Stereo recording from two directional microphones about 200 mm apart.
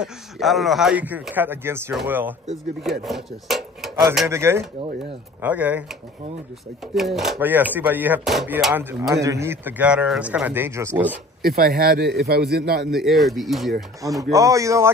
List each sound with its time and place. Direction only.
0.0 s a man's voice: centre (ahead or behind)
4.3 s a man's voice: 15° right (ahead or behind)
9.1 s a man's voice: 15° right (ahead or behind)
11.4 s a man's voice: 50° right (ahead or behind)
12.9 s speech: centre (ahead or behind)
14.0 s a man's voice: 15° right (ahead or behind)